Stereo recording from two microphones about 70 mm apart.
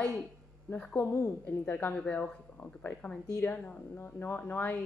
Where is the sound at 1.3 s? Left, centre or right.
Left.